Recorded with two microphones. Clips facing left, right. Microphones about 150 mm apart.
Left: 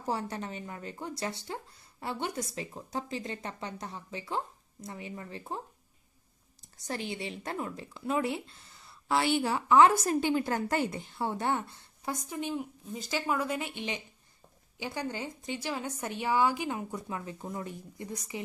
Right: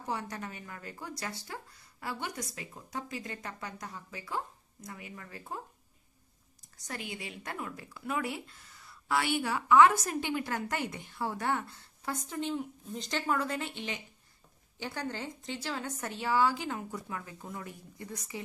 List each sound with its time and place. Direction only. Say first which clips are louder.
0.0 s speech: left 3 dB; 35° left (ahead or behind)
6.9 s a woman's voice: left 5 dB; 30° left (ahead or behind)